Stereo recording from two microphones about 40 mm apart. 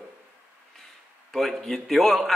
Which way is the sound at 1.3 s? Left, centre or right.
Centre.